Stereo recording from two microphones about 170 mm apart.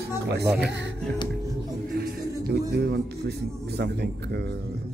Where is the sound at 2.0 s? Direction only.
70° right (ahead or behind); by 4.5 s 85° right.